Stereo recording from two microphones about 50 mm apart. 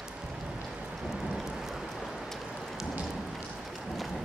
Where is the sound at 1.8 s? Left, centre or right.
Centre.